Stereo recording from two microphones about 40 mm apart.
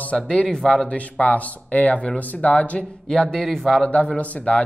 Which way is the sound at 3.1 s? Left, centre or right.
Centre.